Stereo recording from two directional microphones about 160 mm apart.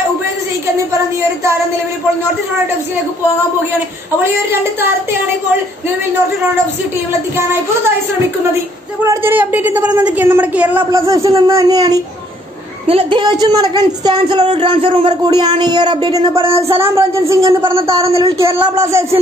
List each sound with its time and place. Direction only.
4.2 s a woman's voice: 15° right (ahead or behind)
9.0 s a woman's voice: 15° right (ahead or behind)
10.9 s speech: 20° right (ahead or behind)
12.8 s a woman's voice: 35° right (ahead or behind)
17.6 s speech: 35° right (ahead or behind)
18.2 s a woman's voice: 15° right (ahead or behind)